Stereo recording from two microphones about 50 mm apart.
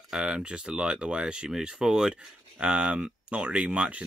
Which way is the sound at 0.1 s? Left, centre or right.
Centre.